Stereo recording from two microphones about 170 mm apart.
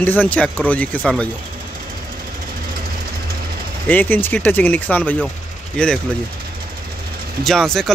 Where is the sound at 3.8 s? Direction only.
10° left (ahead or behind).